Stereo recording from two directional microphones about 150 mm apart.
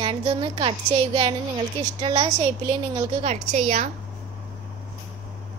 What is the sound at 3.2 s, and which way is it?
Speech, 55° right (ahead or behind).